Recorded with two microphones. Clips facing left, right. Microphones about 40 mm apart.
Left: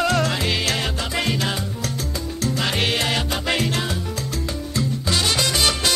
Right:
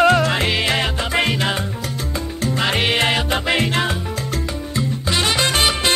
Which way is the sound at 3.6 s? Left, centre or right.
Right.